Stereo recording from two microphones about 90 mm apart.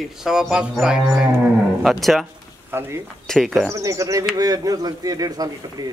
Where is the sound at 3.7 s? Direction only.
35° right (ahead or behind).